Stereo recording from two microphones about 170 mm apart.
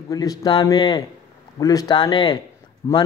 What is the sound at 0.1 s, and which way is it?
A man's voice, 20° left (ahead or behind).